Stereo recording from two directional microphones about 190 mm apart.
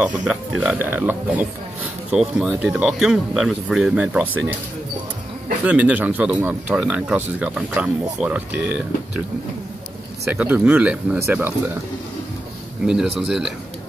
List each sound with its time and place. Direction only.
0.0 s speech: 5° right (ahead or behind)
5.7 s speech: 5° right (ahead or behind)
10.3 s speech: 10° right (ahead or behind)
12.8 s speech: 5° right (ahead or behind)